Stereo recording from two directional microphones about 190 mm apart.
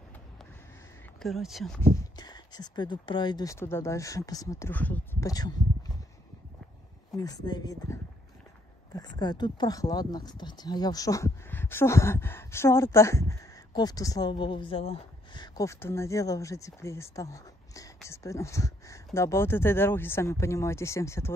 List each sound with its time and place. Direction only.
1.2 s speech: centre (ahead or behind)
2.0 s speech: 20° left (ahead or behind)
5.3 s a sound: 20° left (ahead or behind)
7.2 s speech: 20° left (ahead or behind)